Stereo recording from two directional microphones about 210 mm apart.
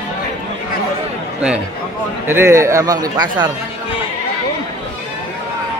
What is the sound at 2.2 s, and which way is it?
A man's voice, 10° right (ahead or behind).